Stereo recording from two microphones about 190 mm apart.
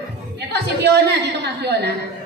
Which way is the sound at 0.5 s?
60° right (ahead or behind).